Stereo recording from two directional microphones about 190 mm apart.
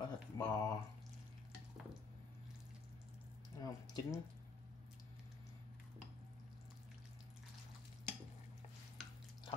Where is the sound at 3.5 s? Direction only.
20° left (ahead or behind).